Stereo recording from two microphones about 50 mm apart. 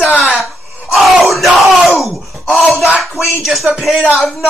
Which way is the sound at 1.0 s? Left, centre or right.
Centre.